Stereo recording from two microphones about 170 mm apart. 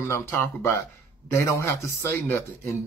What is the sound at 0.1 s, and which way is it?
Speech, 15° left (ahead or behind).